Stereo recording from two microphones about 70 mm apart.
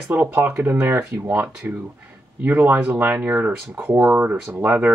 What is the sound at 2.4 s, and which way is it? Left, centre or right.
Speech, right.